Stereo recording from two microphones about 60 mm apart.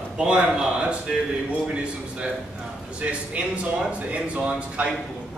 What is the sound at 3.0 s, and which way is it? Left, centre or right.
Speech, right.